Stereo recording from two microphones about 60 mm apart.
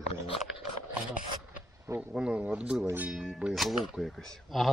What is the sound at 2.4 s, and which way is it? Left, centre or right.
Speech, right.